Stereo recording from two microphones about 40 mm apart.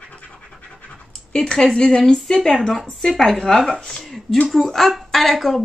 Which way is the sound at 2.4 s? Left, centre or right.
Left.